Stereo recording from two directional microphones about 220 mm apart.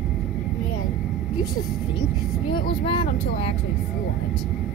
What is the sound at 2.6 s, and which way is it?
Speech, 25° left (ahead or behind).